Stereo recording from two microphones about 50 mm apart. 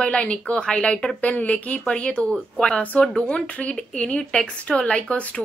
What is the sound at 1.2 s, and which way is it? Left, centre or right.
A woman's voice, left.